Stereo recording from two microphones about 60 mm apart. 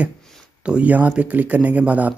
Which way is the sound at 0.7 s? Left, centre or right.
Right.